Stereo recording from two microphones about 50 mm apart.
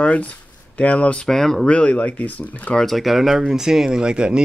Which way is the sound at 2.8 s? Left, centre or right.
Centre.